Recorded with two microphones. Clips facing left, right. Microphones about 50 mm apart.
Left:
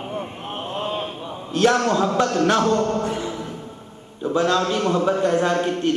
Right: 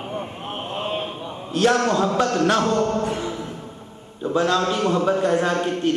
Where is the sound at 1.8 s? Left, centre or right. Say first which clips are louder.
Even; centre.